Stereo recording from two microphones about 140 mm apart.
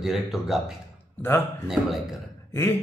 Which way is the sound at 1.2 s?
15° left (ahead or behind).